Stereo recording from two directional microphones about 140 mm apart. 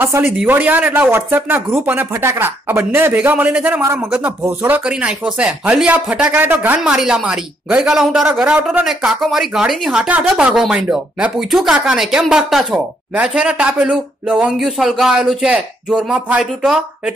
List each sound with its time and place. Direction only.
0.0 s speech: 15° right (ahead or behind)